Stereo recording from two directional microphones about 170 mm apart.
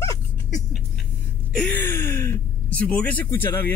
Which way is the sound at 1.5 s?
10° left (ahead or behind).